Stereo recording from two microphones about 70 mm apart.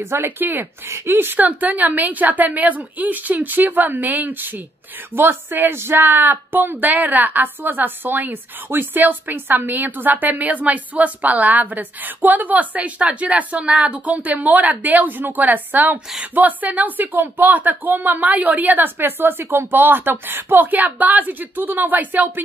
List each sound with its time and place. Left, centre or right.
0.0 s speech: right